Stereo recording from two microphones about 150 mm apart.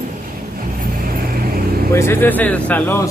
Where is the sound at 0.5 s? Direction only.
70° right (ahead or behind); by 1.8 s 85° right.